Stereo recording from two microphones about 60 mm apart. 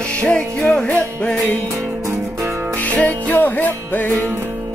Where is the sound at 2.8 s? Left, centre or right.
Left.